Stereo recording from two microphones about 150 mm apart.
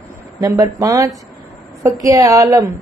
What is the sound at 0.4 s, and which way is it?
A woman's voice, 20° right (ahead or behind).